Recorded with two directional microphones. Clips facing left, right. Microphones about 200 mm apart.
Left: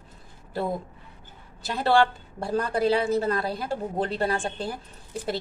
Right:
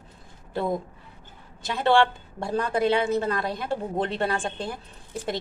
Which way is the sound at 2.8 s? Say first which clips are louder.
Left 1 dB; 35° left (ahead or behind).